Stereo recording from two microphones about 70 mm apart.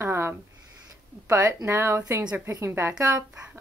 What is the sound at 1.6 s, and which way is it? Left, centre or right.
Speech, right.